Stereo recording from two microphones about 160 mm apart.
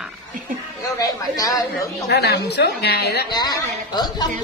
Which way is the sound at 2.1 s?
90° left.